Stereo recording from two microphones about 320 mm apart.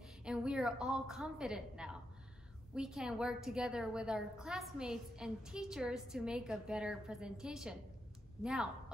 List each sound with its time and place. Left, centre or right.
0.2 s a woman's voice: centre